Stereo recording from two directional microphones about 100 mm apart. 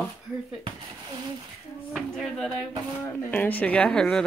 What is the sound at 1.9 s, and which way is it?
Speech, centre (ahead or behind).